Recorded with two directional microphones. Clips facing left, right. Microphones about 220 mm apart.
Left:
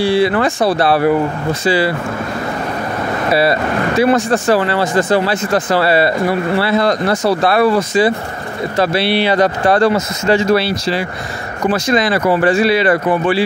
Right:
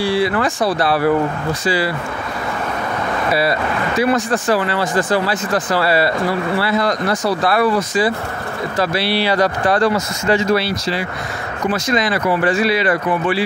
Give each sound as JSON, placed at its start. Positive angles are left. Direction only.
{"t": 0.0, "sound": "speech", "side_deg": 25}
{"t": 4.0, "sound": "speech", "side_deg": 25}